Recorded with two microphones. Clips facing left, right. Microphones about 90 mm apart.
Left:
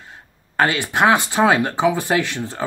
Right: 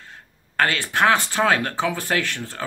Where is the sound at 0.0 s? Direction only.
15° left (ahead or behind).